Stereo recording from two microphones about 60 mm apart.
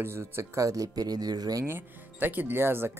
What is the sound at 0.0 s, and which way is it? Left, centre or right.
Speech, right.